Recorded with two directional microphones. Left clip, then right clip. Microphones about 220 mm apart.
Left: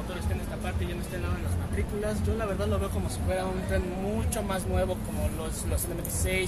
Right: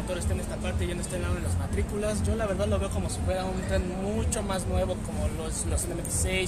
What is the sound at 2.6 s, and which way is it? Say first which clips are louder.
Speech: right 2 dB; 20° right (ahead or behind).